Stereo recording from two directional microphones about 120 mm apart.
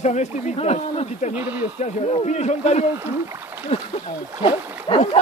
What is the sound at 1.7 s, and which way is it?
Speech, 70° left (ahead or behind).